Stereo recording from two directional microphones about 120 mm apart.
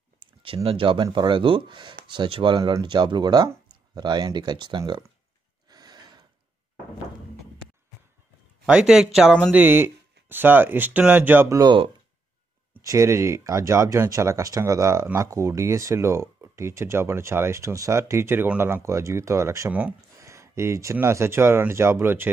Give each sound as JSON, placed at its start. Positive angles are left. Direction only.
{"t": 0.2, "sound": "clicking", "side_deg": -50}
{"t": 0.7, "sound": "speech", "side_deg": -45}
{"t": 5.7, "sound": "gasp", "side_deg": -35}
{"t": 8.6, "sound": "speech", "side_deg": -5}
{"t": 9.5, "sound": "speech", "side_deg": -15}
{"t": 11.4, "sound": "speech", "side_deg": -30}
{"t": 12.8, "sound": "speech", "side_deg": -25}